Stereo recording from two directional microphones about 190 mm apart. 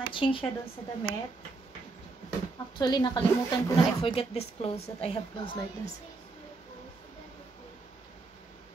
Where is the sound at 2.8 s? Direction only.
20° left (ahead or behind).